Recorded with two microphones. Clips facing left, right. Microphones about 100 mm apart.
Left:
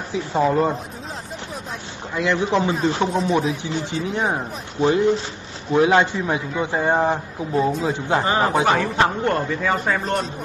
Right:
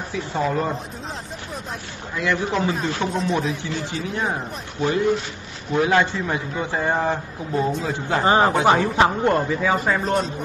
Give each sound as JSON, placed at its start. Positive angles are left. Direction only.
{"t": 0.1, "sound": "a man's voice", "side_deg": 20}
{"t": 2.1, "sound": "a man's voice", "side_deg": 20}
{"t": 3.1, "sound": "a man's voice", "side_deg": 0}
{"t": 3.6, "sound": "a man's voice", "side_deg": 20}
{"t": 8.2, "sound": "speech", "side_deg": -25}
{"t": 8.6, "sound": "a man's voice", "side_deg": -15}